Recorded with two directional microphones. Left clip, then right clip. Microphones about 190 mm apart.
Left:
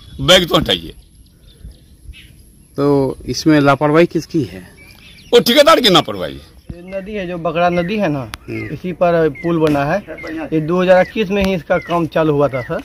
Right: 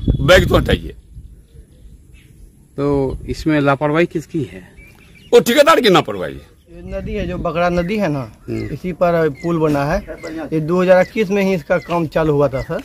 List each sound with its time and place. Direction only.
0.2 s speech: 5° right (ahead or behind)
2.8 s speech: 55° left (ahead or behind)
3.1 s speech: 30° left (ahead or behind)
3.6 s speech: 45° left (ahead or behind)
5.5 s speech: 10° right (ahead or behind)
8.5 s speech: 55° right (ahead or behind)
8.7 s speech: 15° right (ahead or behind)